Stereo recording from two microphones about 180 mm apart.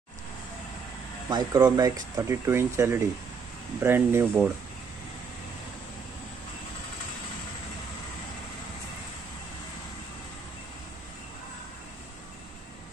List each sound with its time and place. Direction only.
1.3 s speech: 20° right (ahead or behind)